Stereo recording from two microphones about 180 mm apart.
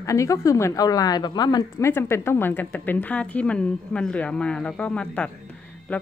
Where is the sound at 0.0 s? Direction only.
15° left (ahead or behind).